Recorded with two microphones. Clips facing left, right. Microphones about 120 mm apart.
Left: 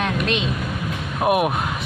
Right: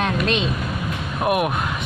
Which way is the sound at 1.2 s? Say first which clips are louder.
Left 2 dB; 15° left (ahead or behind).